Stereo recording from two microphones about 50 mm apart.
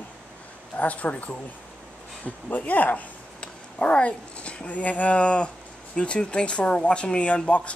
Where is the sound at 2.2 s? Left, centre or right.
Left.